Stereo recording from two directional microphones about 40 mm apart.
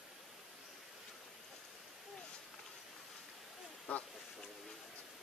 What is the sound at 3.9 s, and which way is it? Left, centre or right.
Duck, left.